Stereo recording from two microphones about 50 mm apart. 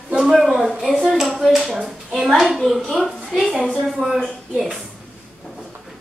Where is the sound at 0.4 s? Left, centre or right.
Centre.